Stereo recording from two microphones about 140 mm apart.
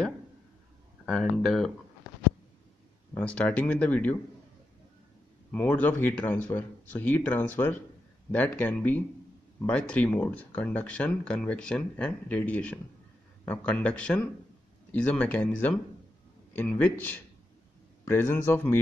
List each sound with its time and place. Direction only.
1.0 s speech: centre (ahead or behind)
3.2 s speech: 10° left (ahead or behind)
5.5 s speech: 10° left (ahead or behind)
18.0 s speech: 15° left (ahead or behind)